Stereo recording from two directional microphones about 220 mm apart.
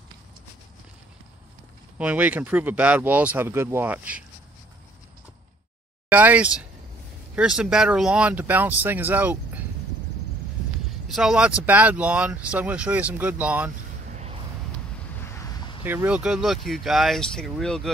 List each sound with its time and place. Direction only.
2.0 s speech: 5° right (ahead or behind)
6.0 s speech: 5° right (ahead or behind)
10.9 s speech: centre (ahead or behind)
14.1 s a sound: 30° right (ahead or behind)
15.8 s speech: 10° right (ahead or behind)